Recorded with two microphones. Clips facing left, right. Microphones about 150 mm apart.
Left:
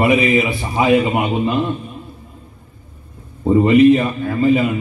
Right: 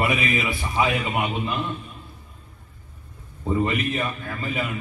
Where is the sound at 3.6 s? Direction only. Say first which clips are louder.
Left 16 dB; 30° left (ahead or behind).